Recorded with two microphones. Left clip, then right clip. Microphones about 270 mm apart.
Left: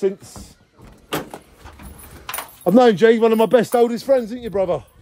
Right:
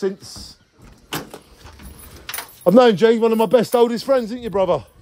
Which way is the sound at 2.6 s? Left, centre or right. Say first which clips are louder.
Even; centre.